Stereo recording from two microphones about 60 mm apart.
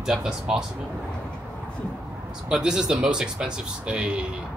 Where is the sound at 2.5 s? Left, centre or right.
Centre.